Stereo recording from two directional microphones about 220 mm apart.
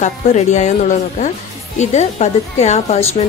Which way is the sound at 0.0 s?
30° left (ahead or behind).